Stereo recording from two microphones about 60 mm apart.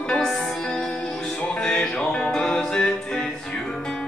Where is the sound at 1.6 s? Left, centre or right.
Centre.